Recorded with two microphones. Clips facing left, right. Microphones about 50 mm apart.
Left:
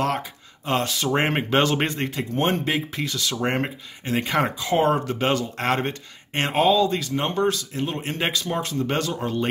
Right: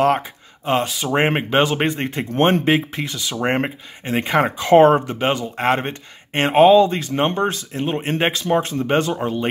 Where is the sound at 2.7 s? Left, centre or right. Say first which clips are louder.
Right 4 dB; right.